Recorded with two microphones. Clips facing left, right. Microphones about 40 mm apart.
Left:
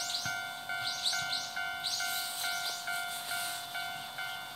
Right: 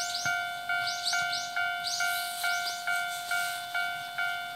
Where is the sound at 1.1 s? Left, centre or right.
Right.